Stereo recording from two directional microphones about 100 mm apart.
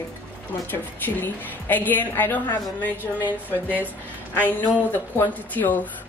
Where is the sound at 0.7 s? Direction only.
20° left (ahead or behind).